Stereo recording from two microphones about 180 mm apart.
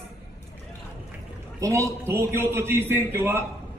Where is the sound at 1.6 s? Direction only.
15° right (ahead or behind).